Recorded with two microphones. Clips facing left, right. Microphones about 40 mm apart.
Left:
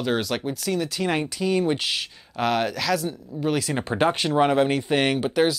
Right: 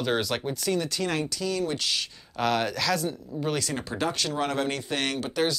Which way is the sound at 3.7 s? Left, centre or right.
Left.